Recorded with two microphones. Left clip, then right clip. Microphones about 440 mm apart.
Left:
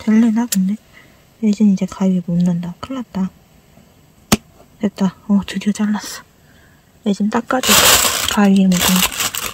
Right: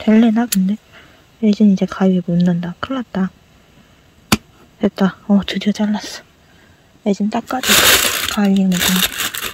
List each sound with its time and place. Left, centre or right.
0.0 s speech: centre
4.7 s speech: centre